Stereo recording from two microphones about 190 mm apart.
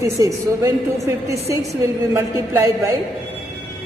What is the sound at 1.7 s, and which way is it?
A woman's voice, 15° right (ahead or behind).